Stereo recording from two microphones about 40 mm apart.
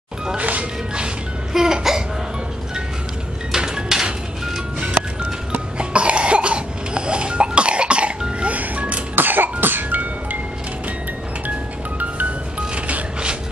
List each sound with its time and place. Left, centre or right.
0.4 s music: right
1.5 s laughter: centre
3.5 s dishes: centre
5.8 s cough: right
8.4 s music: right
9.1 s music: right
12.0 s music: right